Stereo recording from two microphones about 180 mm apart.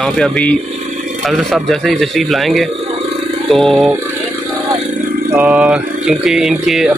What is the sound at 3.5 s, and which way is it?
Speech, centre (ahead or behind).